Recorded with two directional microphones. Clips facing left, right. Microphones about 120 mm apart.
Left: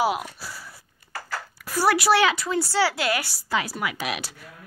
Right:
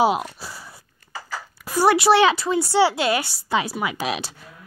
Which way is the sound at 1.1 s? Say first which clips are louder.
Even; 5° right (ahead or behind).